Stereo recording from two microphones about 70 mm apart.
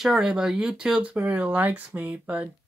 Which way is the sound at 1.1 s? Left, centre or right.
Centre.